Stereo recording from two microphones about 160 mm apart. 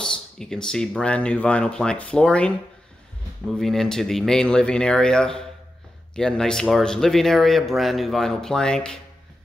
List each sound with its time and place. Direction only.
0.0 s speech: 5° left (ahead or behind)
3.5 s speech: centre (ahead or behind)